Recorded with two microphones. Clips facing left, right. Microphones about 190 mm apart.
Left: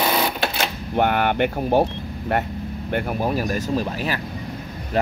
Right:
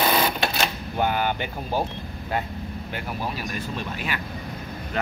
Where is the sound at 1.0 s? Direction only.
65° left (ahead or behind).